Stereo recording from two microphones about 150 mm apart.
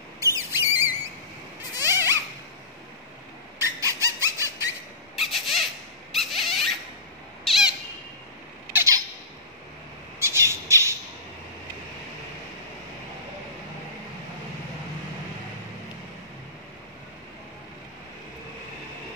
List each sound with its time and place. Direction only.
0.2 s a sound: 20° right (ahead or behind)
1.8 s zipper: 15° right (ahead or behind)
3.5 s a sound: 20° right (ahead or behind)
5.2 s squeak: centre (ahead or behind)
6.1 s rodents: centre (ahead or behind)
8.7 s squawk: 20° right (ahead or behind)
10.1 s squawk: 20° right (ahead or behind)